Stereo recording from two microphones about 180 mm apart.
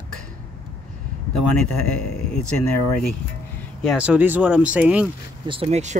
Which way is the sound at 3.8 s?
5° right (ahead or behind).